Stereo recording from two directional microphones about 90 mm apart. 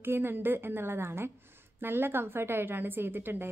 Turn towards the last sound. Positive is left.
turn(degrees=-25)  # may be behind; listen again after turning